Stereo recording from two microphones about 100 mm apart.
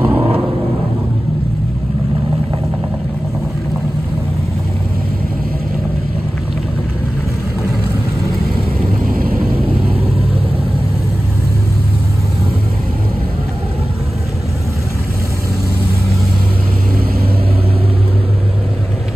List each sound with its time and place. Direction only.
0.0 s vehicle: 20° right (ahead or behind)